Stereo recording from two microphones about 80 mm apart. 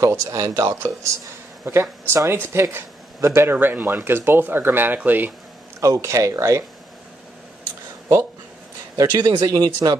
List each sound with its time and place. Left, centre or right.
0.0 s speech: right
1.7 s speech: right
5.8 s speech: right
8.9 s speech: right
9.5 s speech: right